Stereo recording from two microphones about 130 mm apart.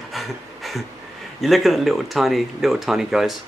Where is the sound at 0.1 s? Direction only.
Centre (ahead or behind).